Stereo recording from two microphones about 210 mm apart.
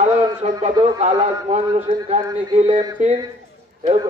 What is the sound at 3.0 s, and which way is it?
Speech, 35° right (ahead or behind).